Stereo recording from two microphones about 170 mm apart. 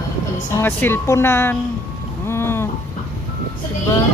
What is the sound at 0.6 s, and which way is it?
A woman's voice, 15° left (ahead or behind).